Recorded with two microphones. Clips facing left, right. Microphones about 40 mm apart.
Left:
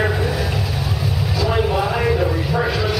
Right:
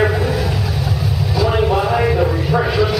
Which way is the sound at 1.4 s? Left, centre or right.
Centre.